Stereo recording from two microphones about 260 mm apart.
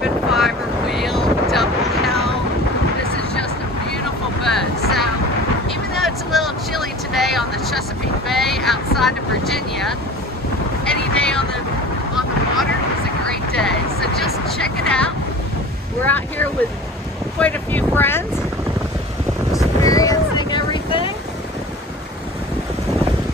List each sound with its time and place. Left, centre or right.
0.0 s wind noise: centre
4.4 s vehicle: centre
13.6 s a sound: centre
16.0 s vehicle: centre
19.8 s boat: centre